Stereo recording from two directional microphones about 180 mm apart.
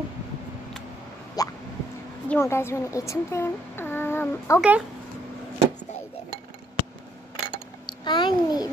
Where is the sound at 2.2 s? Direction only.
15° left (ahead or behind).